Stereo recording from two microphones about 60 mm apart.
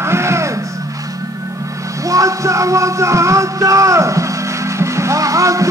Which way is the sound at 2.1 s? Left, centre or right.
Right.